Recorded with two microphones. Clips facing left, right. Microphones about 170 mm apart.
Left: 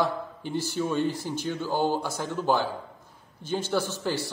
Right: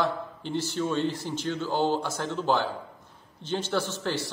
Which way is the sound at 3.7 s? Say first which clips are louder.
Left 2 dB; 10° left (ahead or behind).